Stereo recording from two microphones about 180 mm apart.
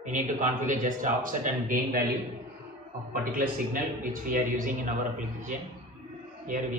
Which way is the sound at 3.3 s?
50° right (ahead or behind).